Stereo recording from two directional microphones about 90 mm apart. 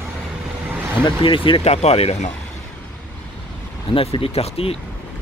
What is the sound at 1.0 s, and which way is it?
Speech, 70° left (ahead or behind).